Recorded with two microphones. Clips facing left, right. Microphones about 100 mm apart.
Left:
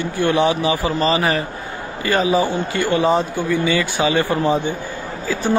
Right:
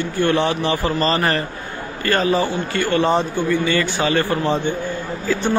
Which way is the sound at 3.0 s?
5° left (ahead or behind).